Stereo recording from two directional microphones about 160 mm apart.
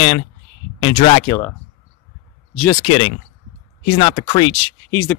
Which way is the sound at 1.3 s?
15° left (ahead or behind).